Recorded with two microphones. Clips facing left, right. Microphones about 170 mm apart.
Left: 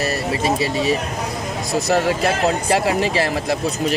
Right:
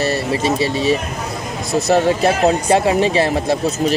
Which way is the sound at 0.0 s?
30° right (ahead or behind).